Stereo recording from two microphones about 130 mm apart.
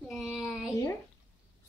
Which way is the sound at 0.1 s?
Centre (ahead or behind).